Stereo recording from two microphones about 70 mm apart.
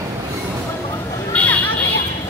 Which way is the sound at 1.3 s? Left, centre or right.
Centre.